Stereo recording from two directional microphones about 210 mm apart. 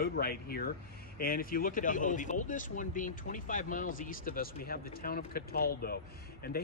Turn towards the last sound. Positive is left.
turn(degrees=45)  # may be behind; listen again after turning